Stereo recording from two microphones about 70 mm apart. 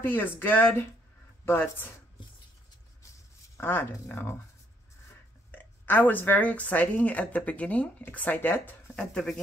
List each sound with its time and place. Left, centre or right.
0.0 s speech: left
3.6 s speech: left
4.1 s speech: left
5.5 s speech: left
9.1 s speech: centre